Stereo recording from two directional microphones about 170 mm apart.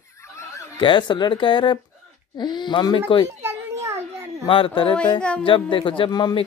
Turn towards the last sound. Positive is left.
turn(degrees=25)  # may be behind; listen again after turning